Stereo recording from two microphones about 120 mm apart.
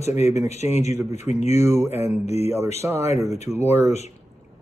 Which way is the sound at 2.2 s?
65° left (ahead or behind).